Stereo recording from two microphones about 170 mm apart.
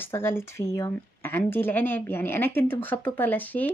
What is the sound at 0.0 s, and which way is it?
Speech, 15° left (ahead or behind).